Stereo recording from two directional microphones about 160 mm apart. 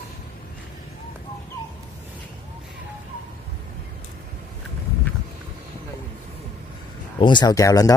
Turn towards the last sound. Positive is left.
turn(degrees=20)  # may be behind; listen again after turning